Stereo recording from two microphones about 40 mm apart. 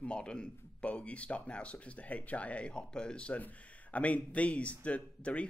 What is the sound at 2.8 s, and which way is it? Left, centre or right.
Speech, left.